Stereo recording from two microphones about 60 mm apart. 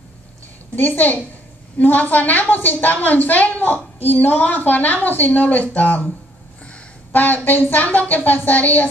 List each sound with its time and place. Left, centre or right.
0.7 s a woman's voice: left
7.1 s a woman's voice: left